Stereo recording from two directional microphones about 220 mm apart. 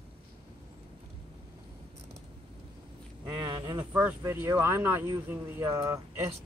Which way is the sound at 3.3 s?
20° right (ahead or behind).